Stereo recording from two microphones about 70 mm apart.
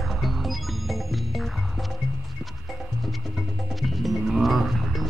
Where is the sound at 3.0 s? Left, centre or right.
Centre.